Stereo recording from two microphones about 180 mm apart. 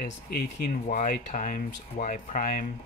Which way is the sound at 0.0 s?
55° left (ahead or behind).